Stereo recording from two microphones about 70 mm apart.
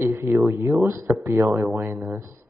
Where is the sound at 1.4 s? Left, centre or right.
Right.